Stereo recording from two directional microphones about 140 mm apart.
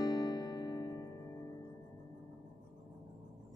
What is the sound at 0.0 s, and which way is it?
Music, 25° left (ahead or behind).